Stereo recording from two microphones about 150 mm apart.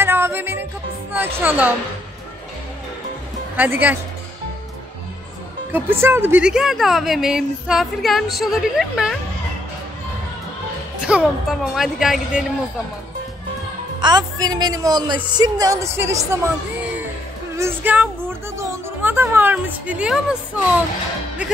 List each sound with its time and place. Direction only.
0.0 s music: 15° right (ahead or behind)
1.1 s speech: 15° right (ahead or behind)
3.5 s speech: 10° right (ahead or behind)
5.7 s speech: 15° right (ahead or behind)
11.0 s speech: 5° right (ahead or behind)
14.0 s a woman's voice: 25° right (ahead or behind)
17.6 s speech: 15° right (ahead or behind)